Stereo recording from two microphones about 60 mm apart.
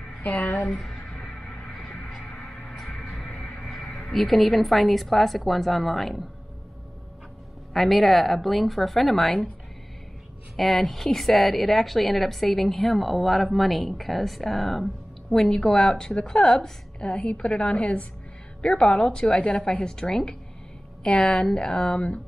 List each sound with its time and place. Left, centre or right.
0.6 s a woman's voice: centre
1.7 s a sound: centre
2.4 s music: centre
3.6 s a woman's voice: centre
7.7 s a woman's voice: centre
10.5 s a woman's voice: centre